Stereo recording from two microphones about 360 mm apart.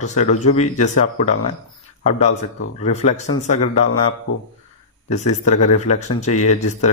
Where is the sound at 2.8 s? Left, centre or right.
Centre.